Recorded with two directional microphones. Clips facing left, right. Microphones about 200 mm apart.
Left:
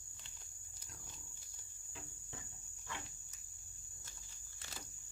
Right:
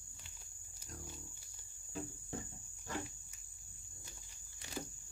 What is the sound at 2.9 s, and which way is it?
Cricket, 40° right (ahead or behind).